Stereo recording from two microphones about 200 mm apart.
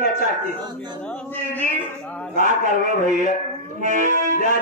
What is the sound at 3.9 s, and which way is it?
Accordion, 40° right (ahead or behind).